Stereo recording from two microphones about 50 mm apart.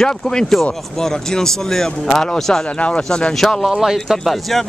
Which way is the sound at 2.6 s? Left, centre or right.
Left.